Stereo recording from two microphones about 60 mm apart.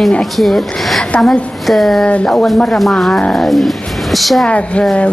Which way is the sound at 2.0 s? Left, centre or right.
Centre.